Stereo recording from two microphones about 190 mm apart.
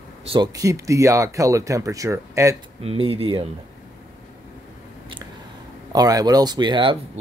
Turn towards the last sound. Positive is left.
turn(degrees=-25)  # may be behind; listen again after turning